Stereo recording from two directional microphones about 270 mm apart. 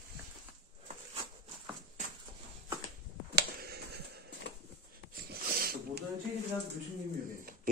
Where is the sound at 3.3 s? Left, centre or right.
Right.